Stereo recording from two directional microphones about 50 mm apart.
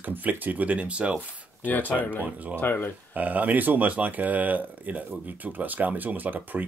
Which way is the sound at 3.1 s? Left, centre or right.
Right.